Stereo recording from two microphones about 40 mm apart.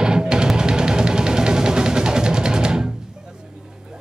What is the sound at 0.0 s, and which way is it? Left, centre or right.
Music, centre.